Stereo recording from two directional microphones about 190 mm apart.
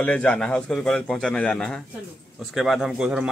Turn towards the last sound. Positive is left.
turn(degrees=-5)  # may be behind; listen again after turning